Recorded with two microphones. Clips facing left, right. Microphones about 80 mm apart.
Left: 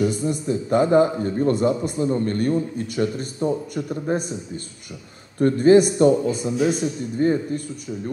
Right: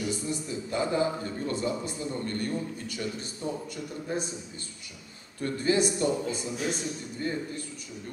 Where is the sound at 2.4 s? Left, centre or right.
Left.